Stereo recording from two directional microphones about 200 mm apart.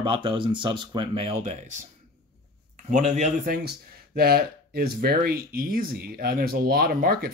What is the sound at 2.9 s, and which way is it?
Speech, 35° right (ahead or behind).